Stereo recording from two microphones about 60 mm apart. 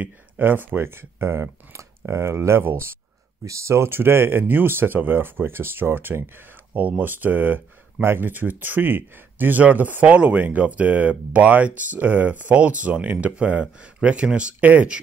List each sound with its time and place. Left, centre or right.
0.0 s speech: right